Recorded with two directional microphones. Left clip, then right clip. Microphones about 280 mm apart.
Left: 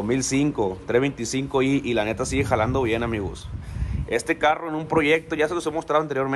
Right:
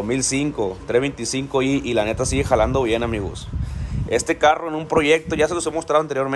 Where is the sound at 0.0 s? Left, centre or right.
Centre.